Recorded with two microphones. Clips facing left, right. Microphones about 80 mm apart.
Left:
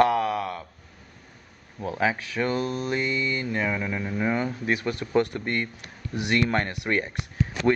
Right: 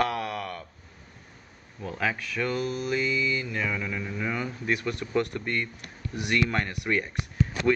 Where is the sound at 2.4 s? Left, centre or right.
Left.